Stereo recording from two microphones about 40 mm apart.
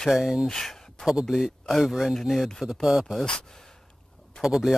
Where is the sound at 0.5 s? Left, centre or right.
Centre.